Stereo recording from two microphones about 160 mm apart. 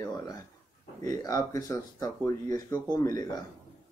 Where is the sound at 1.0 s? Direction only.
20° left (ahead or behind).